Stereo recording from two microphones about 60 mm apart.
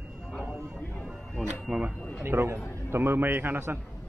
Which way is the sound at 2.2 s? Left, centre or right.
Right.